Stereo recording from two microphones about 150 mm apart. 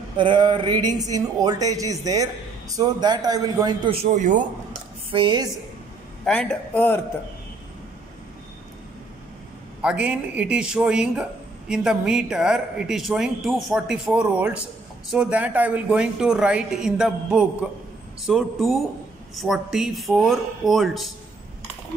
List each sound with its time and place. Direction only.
0.2 s speech: 30° right (ahead or behind)
3.9 s speech: 50° right (ahead or behind)
5.1 s a woman's voice: 30° right (ahead or behind)
6.2 s a man's voice: 5° left (ahead or behind)
9.8 s a man's voice: 5° right (ahead or behind)